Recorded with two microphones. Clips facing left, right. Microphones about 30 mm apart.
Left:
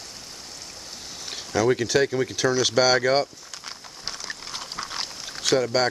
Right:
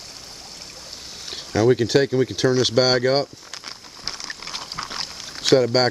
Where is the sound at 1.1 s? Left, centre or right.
Right.